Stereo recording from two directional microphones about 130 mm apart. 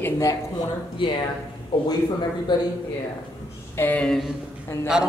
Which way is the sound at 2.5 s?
35° left (ahead or behind).